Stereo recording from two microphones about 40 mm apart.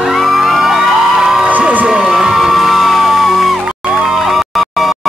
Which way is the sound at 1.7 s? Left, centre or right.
Right.